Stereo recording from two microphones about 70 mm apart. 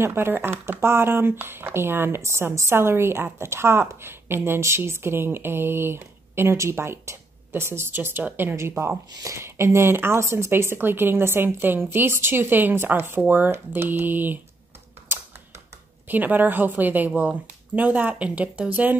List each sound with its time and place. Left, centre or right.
0.0 s speech: right
16.1 s speech: right